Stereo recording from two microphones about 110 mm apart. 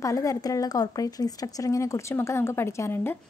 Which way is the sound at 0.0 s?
30° left (ahead or behind).